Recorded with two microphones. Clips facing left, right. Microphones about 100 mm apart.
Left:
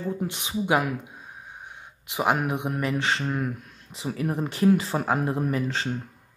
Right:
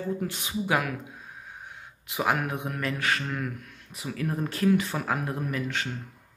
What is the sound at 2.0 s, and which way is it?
Speech, 25° left (ahead or behind).